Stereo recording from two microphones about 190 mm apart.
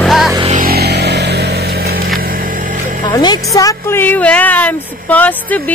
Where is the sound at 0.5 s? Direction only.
50° right (ahead or behind).